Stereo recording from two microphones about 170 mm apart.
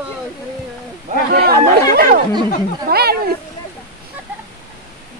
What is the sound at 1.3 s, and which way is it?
Speech, 65° right (ahead or behind).